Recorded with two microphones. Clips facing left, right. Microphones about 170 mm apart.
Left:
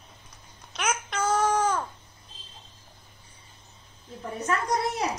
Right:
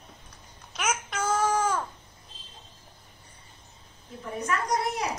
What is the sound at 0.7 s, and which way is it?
Babbling, 5° right (ahead or behind).